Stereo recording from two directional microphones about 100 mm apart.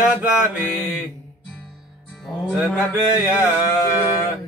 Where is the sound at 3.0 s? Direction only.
20° right (ahead or behind).